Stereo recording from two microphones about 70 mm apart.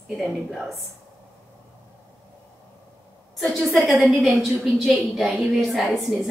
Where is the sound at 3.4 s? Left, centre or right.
Centre.